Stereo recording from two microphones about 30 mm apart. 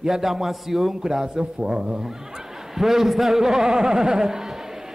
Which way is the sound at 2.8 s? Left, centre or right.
Centre.